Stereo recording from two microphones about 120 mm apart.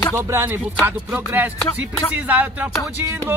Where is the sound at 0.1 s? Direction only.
25° right (ahead or behind).